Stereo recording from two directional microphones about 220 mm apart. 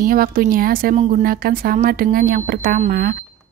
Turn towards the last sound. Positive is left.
turn(degrees=-40)  # may be behind; listen again after turning